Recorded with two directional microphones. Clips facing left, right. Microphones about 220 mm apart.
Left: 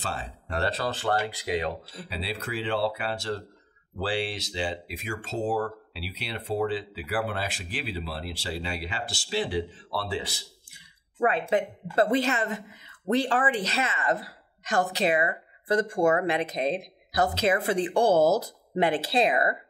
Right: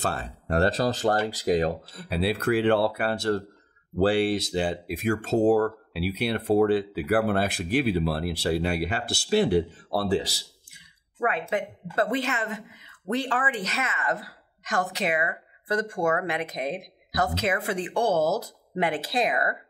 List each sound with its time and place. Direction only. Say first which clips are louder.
0.0 s speech: right 5 dB; 55° right (ahead or behind)
10.7 s a woman's voice: even; 30° left (ahead or behind)